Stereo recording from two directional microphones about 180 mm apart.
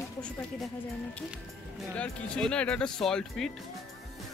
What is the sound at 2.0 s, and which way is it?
Speech, 5° left (ahead or behind).